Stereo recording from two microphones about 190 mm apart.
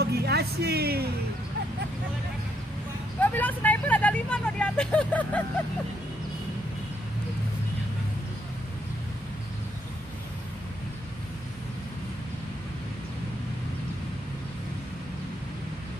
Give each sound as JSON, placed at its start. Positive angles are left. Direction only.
{"t": 0.0, "sound": "music", "side_deg": -55}
{"t": 3.2, "sound": "vehicle", "side_deg": 10}